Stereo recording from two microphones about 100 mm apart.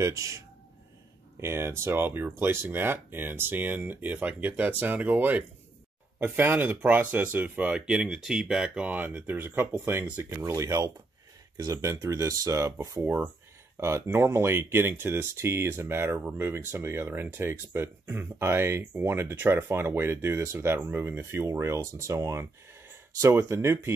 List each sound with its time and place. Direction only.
0.0 s speech: 30° right (ahead or behind)
1.4 s speech: 25° right (ahead or behind)
10.4 s speech: 35° right (ahead or behind)